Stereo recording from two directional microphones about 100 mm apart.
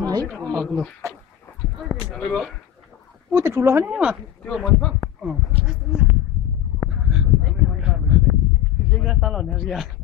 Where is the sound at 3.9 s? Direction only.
10° right (ahead or behind).